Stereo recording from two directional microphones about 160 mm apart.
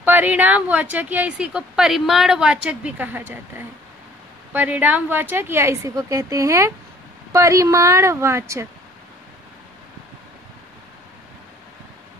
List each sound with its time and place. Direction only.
0.0 s a woman's voice: 10° right (ahead or behind)